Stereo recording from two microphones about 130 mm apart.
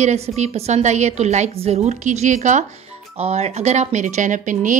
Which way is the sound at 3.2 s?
50° right (ahead or behind).